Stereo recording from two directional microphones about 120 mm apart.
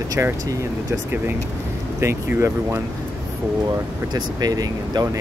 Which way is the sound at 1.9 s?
20° right (ahead or behind).